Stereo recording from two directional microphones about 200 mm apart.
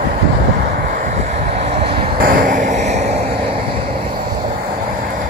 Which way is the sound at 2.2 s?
45° right (ahead or behind).